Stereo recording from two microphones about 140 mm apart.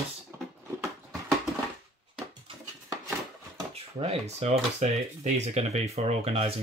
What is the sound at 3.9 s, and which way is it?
Speech, 50° right (ahead or behind).